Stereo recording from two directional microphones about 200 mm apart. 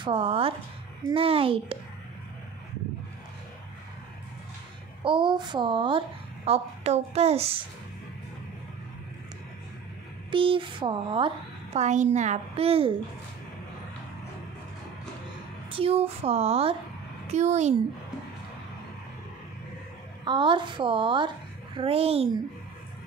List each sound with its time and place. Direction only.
0.0 s speech: 25° right (ahead or behind)
5.0 s speech: 25° right (ahead or behind)
10.3 s speech: 25° right (ahead or behind)
15.7 s a woman's voice: 30° right (ahead or behind)
20.2 s speech: 25° right (ahead or behind)